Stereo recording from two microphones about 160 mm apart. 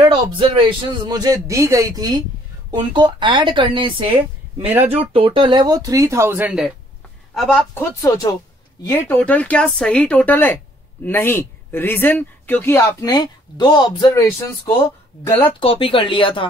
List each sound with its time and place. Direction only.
0.4 s a man's voice: 30° right (ahead or behind)
4.6 s speech: 10° right (ahead or behind)
5.1 s a man's voice: 35° right (ahead or behind); by 6.7 s 5° right (ahead or behind)
7.3 s speech: 5° left (ahead or behind)
8.0 s speech: 20° left (ahead or behind)
8.9 s speech: 10° left (ahead or behind)
15.2 s speech: 15° left (ahead or behind)
15.6 s speech: 35° left (ahead or behind)